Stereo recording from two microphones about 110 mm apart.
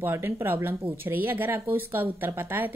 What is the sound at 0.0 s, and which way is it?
A woman's voice, 20° right (ahead or behind).